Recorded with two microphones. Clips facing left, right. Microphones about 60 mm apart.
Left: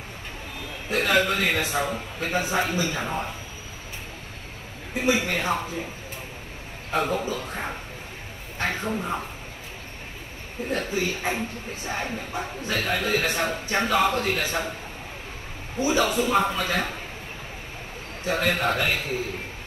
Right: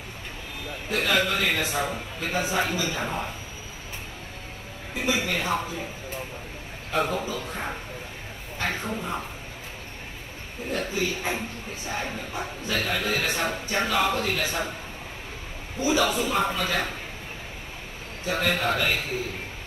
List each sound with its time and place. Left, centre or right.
0.8 s speech: left
4.9 s speech: left
6.9 s speech: left
10.7 s speech: left
15.8 s speech: left
18.2 s speech: left